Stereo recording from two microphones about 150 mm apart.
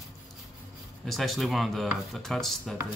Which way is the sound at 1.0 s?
Centre (ahead or behind).